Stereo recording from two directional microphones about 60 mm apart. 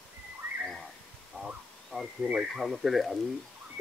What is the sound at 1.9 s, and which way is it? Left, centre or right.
Speech, centre.